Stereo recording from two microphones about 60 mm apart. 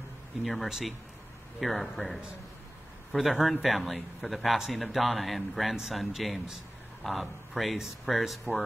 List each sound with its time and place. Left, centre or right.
0.4 s a man's voice: centre